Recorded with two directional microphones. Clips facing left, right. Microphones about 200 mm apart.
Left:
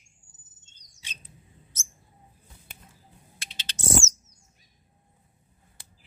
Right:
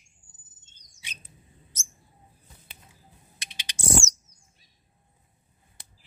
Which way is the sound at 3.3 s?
15° right (ahead or behind).